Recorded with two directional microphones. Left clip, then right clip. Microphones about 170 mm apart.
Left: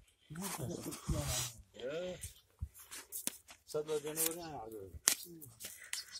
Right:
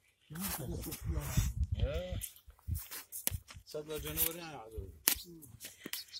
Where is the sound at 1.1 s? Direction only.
30° left (ahead or behind).